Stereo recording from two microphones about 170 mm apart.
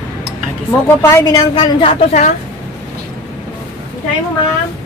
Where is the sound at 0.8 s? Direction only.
15° left (ahead or behind).